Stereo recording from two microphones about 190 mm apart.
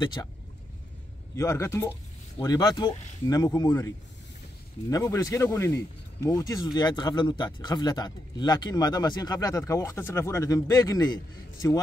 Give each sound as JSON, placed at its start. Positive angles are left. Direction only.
{"t": 0.0, "sound": "speech", "side_deg": 25}
{"t": 1.3, "sound": "speech", "side_deg": 15}